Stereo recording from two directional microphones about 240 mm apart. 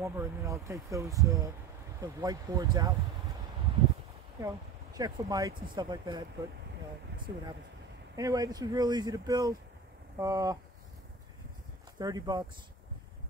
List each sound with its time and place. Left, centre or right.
0.0 s speech: centre
4.4 s speech: centre
7.3 s speech: centre
12.0 s speech: centre